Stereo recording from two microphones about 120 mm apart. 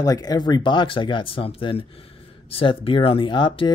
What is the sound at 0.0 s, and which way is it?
Speech, 30° left (ahead or behind).